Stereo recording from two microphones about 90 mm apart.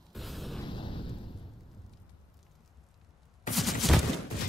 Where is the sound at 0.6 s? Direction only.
65° left (ahead or behind).